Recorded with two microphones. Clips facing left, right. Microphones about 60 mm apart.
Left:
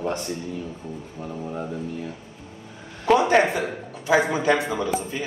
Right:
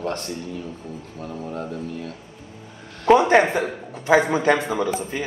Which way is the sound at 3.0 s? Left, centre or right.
Centre.